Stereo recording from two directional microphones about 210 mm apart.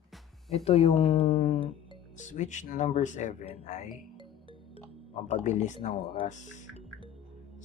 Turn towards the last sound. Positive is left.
turn(degrees=35)  # may be behind; listen again after turning